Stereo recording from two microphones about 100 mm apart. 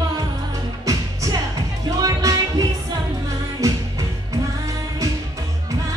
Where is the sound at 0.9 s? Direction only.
40° right (ahead or behind).